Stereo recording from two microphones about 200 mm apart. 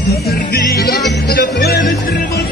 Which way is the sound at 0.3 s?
50° left (ahead or behind).